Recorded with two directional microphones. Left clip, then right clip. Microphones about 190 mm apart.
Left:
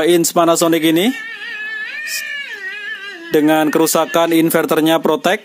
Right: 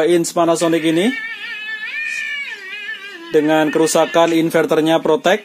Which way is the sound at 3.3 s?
45° left (ahead or behind).